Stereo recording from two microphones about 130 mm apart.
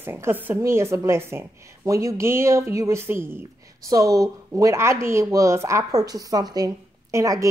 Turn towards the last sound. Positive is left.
turn(degrees=-25)  # may be behind; listen again after turning